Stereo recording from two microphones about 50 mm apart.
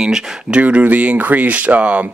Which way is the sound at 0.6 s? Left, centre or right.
Right.